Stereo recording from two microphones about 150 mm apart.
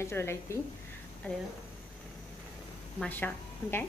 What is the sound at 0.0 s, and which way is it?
Speech, 15° left (ahead or behind).